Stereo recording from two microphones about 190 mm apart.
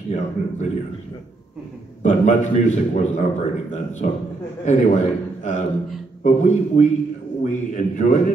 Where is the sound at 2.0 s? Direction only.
40° left (ahead or behind).